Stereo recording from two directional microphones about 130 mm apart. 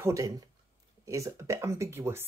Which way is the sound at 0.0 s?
25° right (ahead or behind).